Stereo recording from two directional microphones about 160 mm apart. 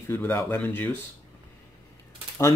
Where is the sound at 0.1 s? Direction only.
15° left (ahead or behind).